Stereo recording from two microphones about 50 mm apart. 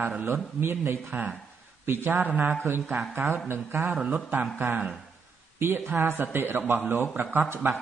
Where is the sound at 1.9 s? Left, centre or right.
Right.